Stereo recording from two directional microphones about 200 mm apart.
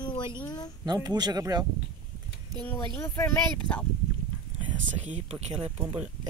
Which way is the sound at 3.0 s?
10° left (ahead or behind).